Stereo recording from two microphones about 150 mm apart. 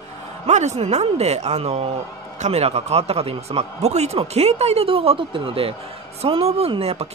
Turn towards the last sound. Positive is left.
turn(degrees=-40)  # may be behind; listen again after turning